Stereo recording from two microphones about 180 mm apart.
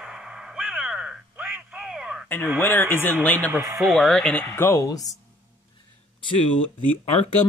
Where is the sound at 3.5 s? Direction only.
15° right (ahead or behind).